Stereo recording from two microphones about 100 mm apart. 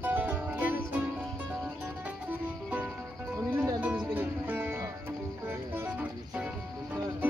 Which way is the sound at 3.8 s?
15° right (ahead or behind).